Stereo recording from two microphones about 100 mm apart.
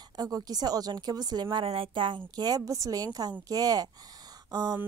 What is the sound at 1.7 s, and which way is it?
A woman's voice, 60° right (ahead or behind).